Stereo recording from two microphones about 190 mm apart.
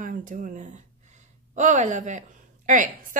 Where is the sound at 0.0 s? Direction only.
45° right (ahead or behind).